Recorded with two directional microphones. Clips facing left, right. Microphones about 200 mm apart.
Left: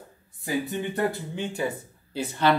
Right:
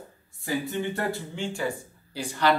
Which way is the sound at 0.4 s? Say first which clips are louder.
Left 1 dB; 20° left (ahead or behind).